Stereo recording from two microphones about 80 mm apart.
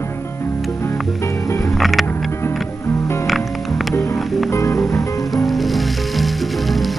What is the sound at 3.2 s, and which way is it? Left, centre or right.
Music, centre.